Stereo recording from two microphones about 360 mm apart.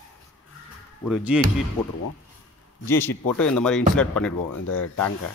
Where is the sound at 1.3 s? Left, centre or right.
Centre.